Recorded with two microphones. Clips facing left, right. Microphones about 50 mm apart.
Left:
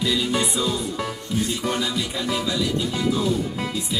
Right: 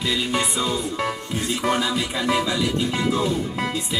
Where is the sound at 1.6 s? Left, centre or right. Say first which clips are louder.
Right 3 dB; right.